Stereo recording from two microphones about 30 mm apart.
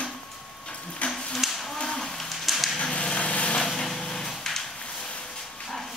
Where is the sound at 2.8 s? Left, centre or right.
Left.